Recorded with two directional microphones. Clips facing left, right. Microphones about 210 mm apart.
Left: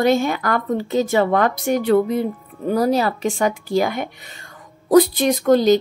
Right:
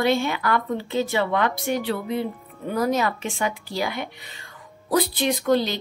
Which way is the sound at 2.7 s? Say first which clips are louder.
Left 5 dB; 35° left (ahead or behind).